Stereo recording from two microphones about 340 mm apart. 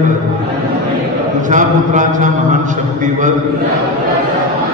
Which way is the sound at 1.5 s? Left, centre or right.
Right.